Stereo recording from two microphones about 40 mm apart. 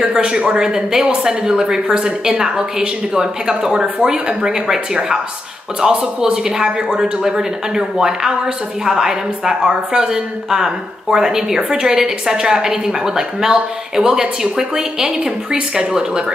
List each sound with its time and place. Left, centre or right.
0.0 s a woman's voice: centre
15.1 s a woman's voice: right